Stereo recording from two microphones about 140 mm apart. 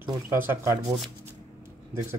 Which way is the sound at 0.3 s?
15° right (ahead or behind).